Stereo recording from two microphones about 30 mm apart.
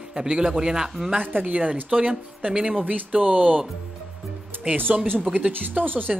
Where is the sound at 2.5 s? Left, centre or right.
Right.